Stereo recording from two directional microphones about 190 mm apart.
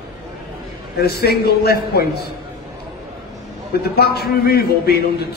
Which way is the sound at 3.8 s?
55° left (ahead or behind).